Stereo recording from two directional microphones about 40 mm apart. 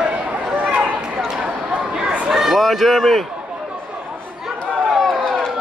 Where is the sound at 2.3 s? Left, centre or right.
Centre.